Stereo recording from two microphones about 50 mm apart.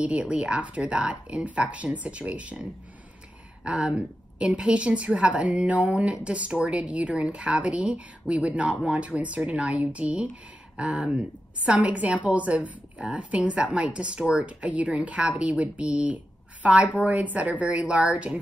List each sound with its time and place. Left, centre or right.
0.0 s a woman's voice: right
3.6 s a woman's voice: centre